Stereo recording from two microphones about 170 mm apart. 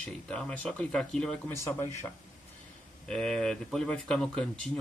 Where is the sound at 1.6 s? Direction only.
15° left (ahead or behind).